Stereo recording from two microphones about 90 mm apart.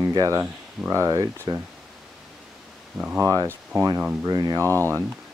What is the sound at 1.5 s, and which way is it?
Speech, 75° right (ahead or behind).